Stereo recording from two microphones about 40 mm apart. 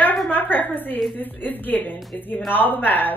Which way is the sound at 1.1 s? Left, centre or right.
Left.